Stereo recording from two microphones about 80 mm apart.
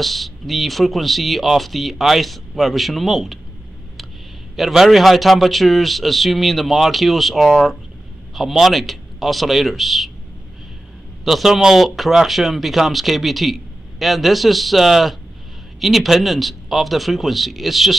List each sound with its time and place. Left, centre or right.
0.0 s speech: centre
4.6 s speech: centre
11.2 s speech: centre